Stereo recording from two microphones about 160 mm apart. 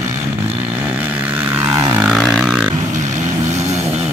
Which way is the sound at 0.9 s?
10° right (ahead or behind).